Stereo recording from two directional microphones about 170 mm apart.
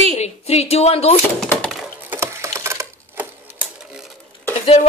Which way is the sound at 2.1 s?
15° right (ahead or behind).